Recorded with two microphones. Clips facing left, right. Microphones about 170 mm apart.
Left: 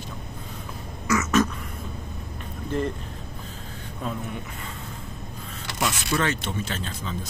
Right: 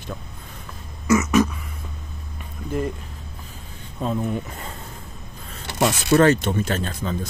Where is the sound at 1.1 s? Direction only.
15° right (ahead or behind).